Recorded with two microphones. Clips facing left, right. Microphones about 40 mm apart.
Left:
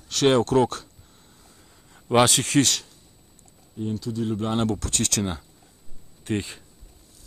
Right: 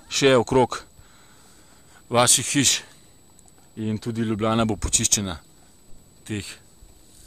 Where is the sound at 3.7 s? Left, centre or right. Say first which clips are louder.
Right 2 dB; right.